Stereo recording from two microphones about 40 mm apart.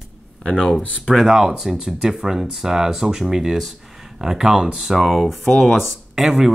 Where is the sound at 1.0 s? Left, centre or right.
Centre.